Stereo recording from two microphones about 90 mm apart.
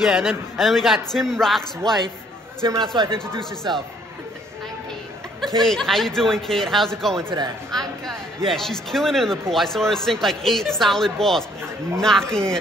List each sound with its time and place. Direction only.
0.0 s speech: centre (ahead or behind)
2.8 s speech: 60° right (ahead or behind)
5.6 s speech: 5° left (ahead or behind)
7.7 s a sound: 5° left (ahead or behind)
8.5 s speech: 5° left (ahead or behind)